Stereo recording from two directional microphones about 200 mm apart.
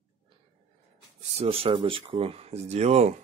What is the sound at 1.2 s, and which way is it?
Speech, 30° right (ahead or behind).